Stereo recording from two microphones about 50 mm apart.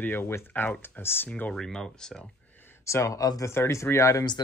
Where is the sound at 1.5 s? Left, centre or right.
Centre.